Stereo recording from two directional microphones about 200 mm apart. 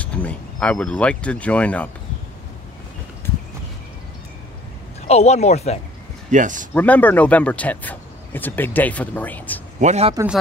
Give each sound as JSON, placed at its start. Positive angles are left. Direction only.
{"t": 0.0, "sound": "speech", "side_deg": 5}
{"t": 5.0, "sound": "speech", "side_deg": 35}
{"t": 6.3, "sound": "a man's voice", "side_deg": -40}
{"t": 6.7, "sound": "speech", "side_deg": 10}
{"t": 9.8, "sound": "a man's voice", "side_deg": -35}